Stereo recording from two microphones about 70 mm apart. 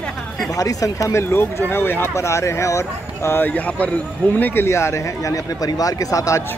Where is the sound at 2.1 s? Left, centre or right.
Left.